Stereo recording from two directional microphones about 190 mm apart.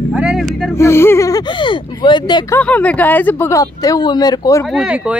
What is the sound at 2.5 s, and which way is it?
Speech, 5° left (ahead or behind).